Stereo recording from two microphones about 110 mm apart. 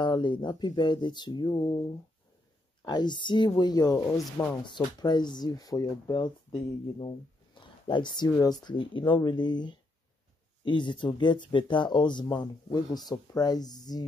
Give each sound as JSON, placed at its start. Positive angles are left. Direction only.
{"t": 0.0, "sound": "speech", "side_deg": 45}
{"t": 2.8, "sound": "speech", "side_deg": 40}
{"t": 7.9, "sound": "speech", "side_deg": 45}